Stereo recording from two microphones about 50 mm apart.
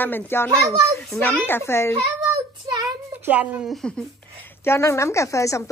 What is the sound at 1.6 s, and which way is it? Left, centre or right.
Speech, left.